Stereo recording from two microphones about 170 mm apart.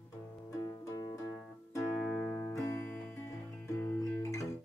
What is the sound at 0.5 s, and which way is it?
Music, 20° left (ahead or behind).